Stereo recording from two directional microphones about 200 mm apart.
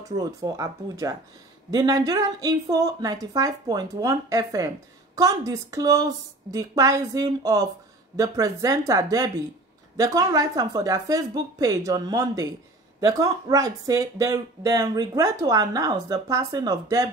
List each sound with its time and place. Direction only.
0.0 s speech: 20° right (ahead or behind)